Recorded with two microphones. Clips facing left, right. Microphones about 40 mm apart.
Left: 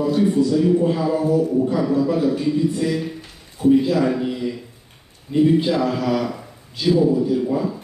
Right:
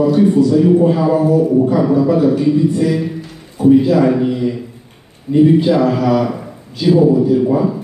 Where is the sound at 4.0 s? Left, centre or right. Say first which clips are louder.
Right 7 dB; centre.